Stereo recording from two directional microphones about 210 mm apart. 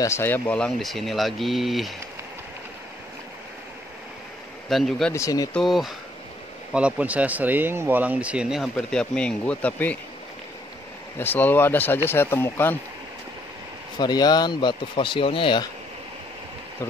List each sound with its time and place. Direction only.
0.0 s speech: 10° left (ahead or behind)
4.6 s speech: centre (ahead or behind)
5.1 s speech: 15° left (ahead or behind)
5.5 s speech: centre (ahead or behind)
11.1 s speech: 10° left (ahead or behind)
13.9 s speech: 20° left (ahead or behind)